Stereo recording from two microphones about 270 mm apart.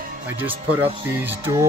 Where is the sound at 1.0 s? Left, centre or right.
Centre.